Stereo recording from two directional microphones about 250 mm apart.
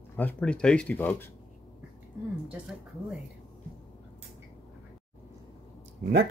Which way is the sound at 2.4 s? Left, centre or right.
Centre.